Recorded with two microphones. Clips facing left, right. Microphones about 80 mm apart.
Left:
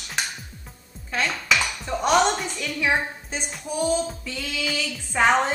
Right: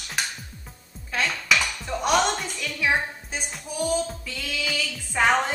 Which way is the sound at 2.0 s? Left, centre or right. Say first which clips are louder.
Left 3 dB; centre.